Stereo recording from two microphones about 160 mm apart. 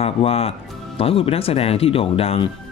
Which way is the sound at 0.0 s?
40° left (ahead or behind).